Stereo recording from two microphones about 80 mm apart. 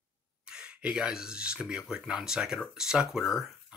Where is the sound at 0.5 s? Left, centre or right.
Centre.